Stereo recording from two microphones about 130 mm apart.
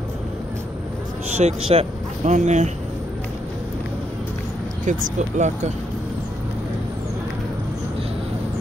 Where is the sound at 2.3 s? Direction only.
65° right (ahead or behind).